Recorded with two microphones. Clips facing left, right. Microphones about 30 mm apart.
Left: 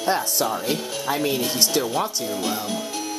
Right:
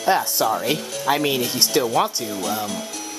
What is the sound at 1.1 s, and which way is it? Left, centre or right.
Speech, right.